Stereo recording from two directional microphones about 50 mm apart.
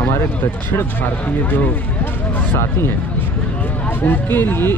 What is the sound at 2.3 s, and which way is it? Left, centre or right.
Speech, left.